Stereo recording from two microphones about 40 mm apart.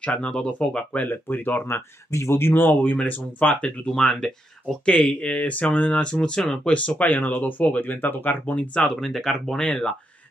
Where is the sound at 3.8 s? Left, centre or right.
Centre; by 6.0 s left.